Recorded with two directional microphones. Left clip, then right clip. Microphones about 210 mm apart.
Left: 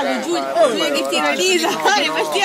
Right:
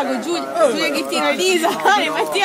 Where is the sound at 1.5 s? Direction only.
20° right (ahead or behind).